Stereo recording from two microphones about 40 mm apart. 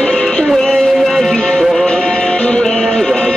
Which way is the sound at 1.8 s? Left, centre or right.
Left.